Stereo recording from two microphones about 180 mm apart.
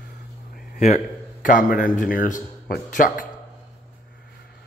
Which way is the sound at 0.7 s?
40° left (ahead or behind).